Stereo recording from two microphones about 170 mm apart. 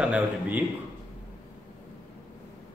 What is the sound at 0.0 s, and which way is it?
Speech, 10° right (ahead or behind).